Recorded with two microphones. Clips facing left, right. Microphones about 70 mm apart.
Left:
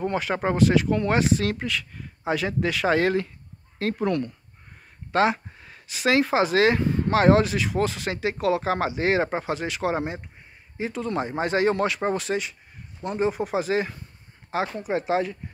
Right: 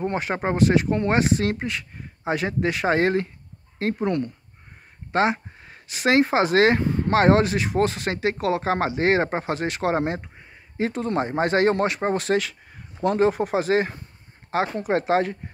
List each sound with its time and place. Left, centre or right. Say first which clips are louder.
0.0 s speech: even; right
5.1 s a sound: even; right
6.0 s speech: right 2 dB; right
10.9 s speech: right 1 dB; right
11.8 s speech: right 1 dB; right
13.0 s speech: right 5 dB; right
13.3 s speech: right 3 dB; right